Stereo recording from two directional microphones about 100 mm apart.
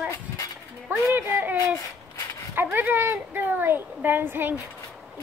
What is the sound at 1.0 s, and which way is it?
A woman's voice, 25° right (ahead or behind).